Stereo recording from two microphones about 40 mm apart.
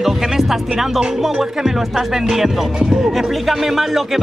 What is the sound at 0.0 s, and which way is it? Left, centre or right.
Speech, centre.